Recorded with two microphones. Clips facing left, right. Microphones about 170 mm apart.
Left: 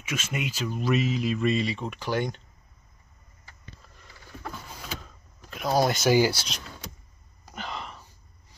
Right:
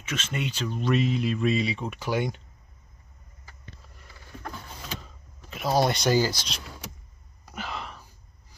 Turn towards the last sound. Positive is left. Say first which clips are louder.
# right 1 dB
turn(degrees=0)  # may be behind; listen again after turning